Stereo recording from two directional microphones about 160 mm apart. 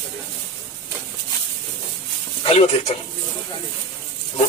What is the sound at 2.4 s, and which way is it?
Speech, 40° left (ahead or behind).